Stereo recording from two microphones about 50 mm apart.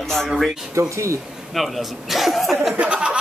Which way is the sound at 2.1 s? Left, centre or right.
Centre.